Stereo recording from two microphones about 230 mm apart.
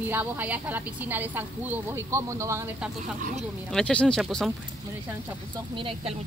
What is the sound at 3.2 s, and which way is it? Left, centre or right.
Speech, right.